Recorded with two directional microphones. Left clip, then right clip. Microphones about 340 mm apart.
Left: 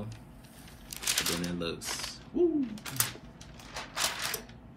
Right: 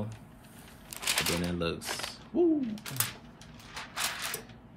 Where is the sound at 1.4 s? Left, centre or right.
Right.